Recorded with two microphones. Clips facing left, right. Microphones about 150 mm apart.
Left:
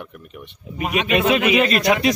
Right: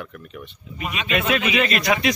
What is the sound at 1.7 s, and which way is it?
Speech, 40° left (ahead or behind).